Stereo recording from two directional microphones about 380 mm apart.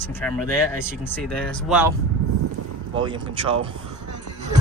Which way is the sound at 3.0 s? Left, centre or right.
Centre.